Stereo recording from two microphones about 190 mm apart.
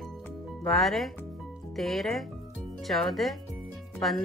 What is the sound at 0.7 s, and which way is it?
Speech, centre (ahead or behind).